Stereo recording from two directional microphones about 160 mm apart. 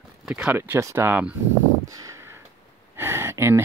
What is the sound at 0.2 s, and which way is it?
Speech, 5° right (ahead or behind).